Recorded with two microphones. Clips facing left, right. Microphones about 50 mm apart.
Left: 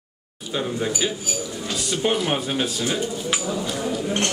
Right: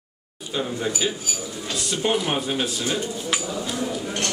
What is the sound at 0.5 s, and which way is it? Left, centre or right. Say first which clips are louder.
A man's voice: left 1 dB; centre.